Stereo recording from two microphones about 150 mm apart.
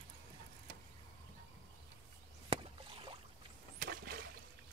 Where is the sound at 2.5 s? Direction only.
35° right (ahead or behind).